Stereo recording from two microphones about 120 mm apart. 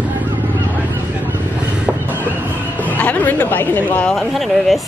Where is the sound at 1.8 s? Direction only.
15° right (ahead or behind).